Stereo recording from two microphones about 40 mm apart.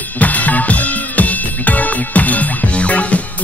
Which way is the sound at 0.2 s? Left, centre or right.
Left.